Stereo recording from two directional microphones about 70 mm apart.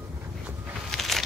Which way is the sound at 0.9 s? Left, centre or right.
Centre.